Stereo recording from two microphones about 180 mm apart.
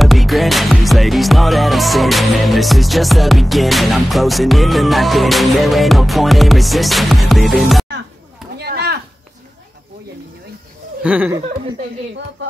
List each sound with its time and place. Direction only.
0.0 s music: centre (ahead or behind)
8.5 s a sound: 65° right (ahead or behind)
11.0 s speech: 10° right (ahead or behind)